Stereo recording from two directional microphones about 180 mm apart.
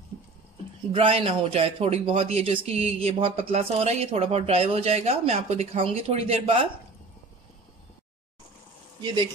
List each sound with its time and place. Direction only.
0.9 s a man's voice: 30° right (ahead or behind)
9.0 s speech: 25° right (ahead or behind)